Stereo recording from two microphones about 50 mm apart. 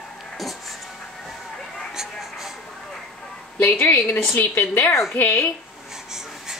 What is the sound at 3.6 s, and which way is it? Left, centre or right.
A woman's voice, left.